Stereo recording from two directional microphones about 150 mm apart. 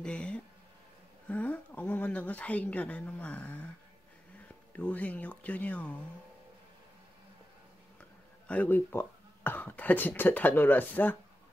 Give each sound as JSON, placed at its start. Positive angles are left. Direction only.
{"t": 0.0, "sound": "speech", "side_deg": 5}
{"t": 4.7, "sound": "speech", "side_deg": 10}
{"t": 8.5, "sound": "speech", "side_deg": 10}